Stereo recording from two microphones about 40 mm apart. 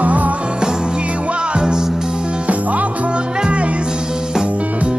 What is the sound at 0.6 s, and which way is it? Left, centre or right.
Music, right.